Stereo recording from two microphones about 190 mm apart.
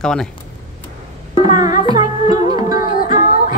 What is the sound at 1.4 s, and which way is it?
Music, 20° right (ahead or behind).